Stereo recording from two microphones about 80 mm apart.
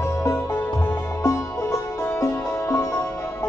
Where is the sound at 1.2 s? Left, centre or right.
Left.